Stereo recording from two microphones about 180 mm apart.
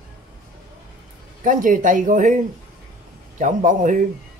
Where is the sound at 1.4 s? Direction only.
45° right (ahead or behind).